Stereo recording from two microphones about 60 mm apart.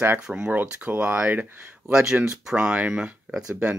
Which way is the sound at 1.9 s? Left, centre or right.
Centre.